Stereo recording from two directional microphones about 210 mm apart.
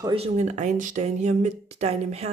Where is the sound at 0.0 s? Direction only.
30° right (ahead or behind).